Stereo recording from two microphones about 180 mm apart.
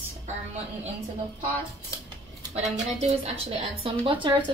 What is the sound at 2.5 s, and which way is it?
A woman's voice, 35° right (ahead or behind).